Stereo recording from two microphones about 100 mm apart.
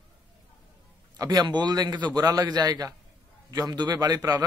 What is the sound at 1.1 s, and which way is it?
A man's voice, 45° right (ahead or behind).